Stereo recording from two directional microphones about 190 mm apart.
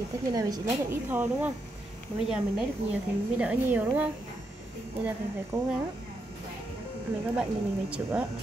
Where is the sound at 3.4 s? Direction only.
5° right (ahead or behind).